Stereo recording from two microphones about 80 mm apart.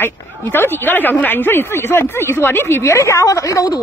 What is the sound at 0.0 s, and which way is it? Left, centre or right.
Speech, left.